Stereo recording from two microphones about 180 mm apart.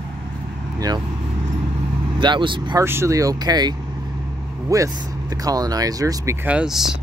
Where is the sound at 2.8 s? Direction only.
15° right (ahead or behind).